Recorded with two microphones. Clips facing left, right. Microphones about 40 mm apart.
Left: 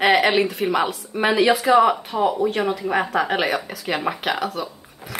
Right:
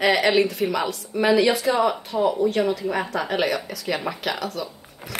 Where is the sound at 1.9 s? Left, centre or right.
Centre.